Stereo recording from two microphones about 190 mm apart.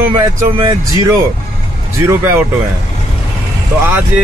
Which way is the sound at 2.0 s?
15° right (ahead or behind).